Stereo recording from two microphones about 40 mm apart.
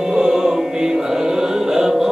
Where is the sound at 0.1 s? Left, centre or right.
Centre.